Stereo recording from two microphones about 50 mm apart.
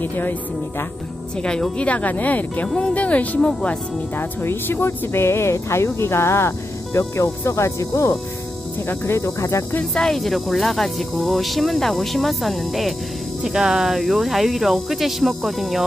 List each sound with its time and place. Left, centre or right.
0.0 s speech: left
1.3 s speech: centre
3.3 s speech: centre
4.2 s speech: left
8.8 s speech: left
9.9 s speech: centre
13.4 s speech: centre